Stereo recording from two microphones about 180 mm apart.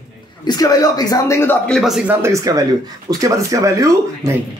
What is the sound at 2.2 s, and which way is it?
Speech, 20° right (ahead or behind).